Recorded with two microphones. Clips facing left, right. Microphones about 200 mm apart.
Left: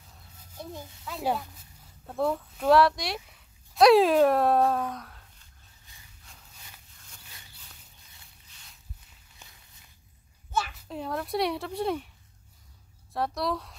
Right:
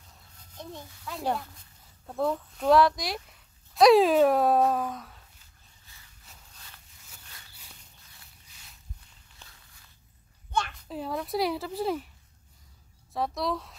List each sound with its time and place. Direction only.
0.6 s speech: 5° left (ahead or behind)
5.9 s vehicle: 15° left (ahead or behind)
6.5 s a sound: 10° left (ahead or behind)
9.4 s walk: 15° left (ahead or behind)
10.5 s speech: 5° left (ahead or behind)
13.1 s speech: centre (ahead or behind)